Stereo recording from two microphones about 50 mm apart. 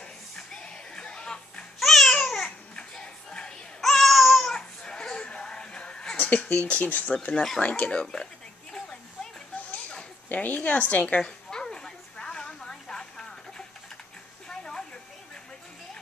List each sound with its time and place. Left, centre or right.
0.6 s music: centre
1.8 s babbling: centre
2.7 s music: centre
3.8 s baby cry: centre
4.6 s music: centre
6.1 s a sound: left
6.5 s speech: left
9.7 s a sound: left